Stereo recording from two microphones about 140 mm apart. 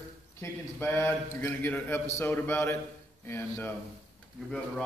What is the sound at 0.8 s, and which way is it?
A man's voice, 15° left (ahead or behind).